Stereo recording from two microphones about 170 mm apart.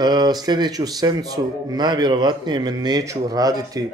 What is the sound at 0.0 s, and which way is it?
Speech, 25° right (ahead or behind).